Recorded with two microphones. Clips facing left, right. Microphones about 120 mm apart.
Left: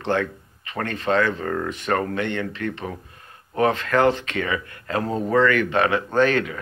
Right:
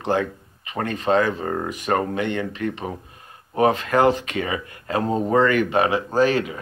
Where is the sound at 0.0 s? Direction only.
15° right (ahead or behind).